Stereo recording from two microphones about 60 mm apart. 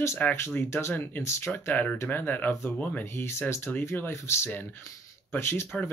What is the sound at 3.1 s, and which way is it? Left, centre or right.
Speech, left.